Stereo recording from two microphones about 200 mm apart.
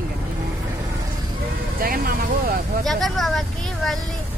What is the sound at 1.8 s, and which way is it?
Vehicle, 45° right (ahead or behind).